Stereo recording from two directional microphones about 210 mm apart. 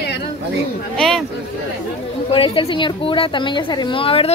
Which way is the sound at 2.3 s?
25° left (ahead or behind).